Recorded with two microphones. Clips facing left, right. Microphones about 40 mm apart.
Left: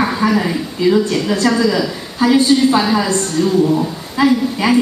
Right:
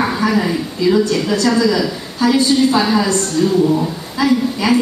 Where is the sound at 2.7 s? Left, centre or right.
Centre.